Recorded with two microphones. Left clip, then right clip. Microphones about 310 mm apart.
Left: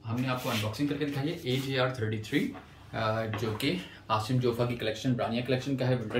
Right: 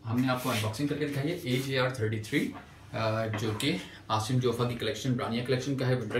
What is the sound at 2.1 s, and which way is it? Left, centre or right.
Speech, centre.